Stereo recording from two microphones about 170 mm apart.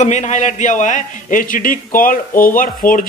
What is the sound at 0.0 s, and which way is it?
A man's voice, 45° left (ahead or behind).